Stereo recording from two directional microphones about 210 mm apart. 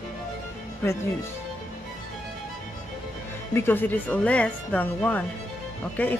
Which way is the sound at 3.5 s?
10° left (ahead or behind).